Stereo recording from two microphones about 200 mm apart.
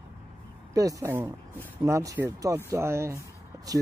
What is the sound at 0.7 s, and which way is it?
Speech, 15° right (ahead or behind).